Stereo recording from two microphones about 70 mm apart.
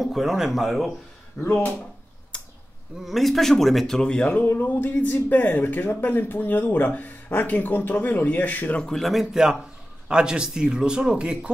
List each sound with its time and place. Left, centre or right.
0.0 s speech: centre
2.3 s a sound: centre
3.0 s speech: centre; by 8.8 s left
8.8 s a man's voice: centre